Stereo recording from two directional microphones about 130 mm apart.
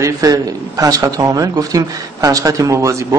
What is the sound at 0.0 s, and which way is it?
A man's voice, 25° right (ahead or behind).